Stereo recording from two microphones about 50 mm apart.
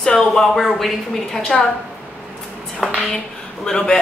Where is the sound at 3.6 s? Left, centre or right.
Centre.